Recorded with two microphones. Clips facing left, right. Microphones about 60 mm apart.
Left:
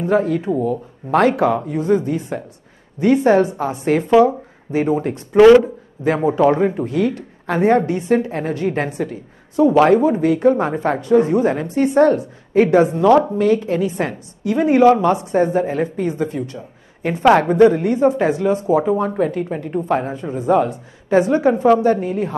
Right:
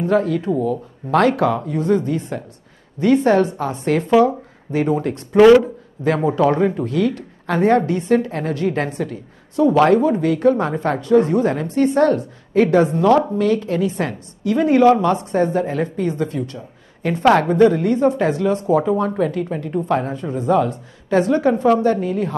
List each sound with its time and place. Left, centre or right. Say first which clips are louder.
0.0 s a woman's voice: left 1 dB; centre
6.0 s a woman's voice: left 1 dB; centre